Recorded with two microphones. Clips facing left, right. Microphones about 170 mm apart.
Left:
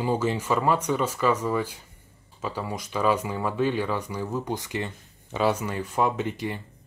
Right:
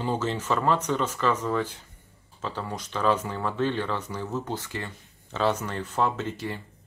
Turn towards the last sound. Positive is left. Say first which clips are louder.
# left 3 dB
turn(degrees=15)  # may be behind; listen again after turning